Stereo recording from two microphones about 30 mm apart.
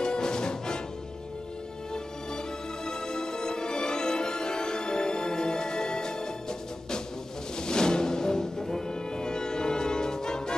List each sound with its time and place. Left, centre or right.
0.0 s music: left
2.9 s music: left
7.5 s music: left